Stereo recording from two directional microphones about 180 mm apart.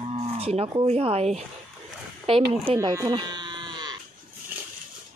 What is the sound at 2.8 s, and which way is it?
Sheep, 20° right (ahead or behind).